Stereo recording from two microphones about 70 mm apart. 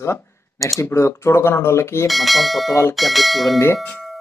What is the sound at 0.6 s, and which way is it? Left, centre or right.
Speech, left.